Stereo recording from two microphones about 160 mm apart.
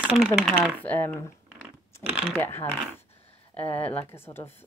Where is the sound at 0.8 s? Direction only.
10° left (ahead or behind).